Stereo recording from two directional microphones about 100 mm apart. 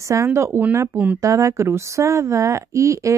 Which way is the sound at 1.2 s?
30° right (ahead or behind).